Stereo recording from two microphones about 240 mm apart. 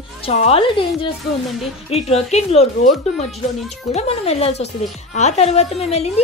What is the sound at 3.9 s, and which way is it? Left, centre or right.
A woman's voice, left.